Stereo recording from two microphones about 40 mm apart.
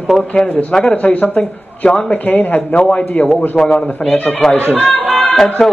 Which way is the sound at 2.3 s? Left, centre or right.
Left.